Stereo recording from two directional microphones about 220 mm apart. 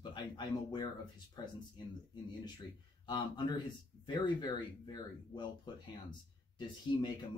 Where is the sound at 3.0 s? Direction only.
20° left (ahead or behind).